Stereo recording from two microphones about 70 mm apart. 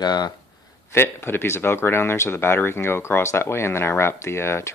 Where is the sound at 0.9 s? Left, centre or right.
Left.